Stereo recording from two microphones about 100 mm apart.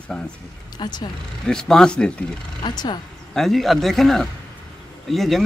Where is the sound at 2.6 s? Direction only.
45° left (ahead or behind).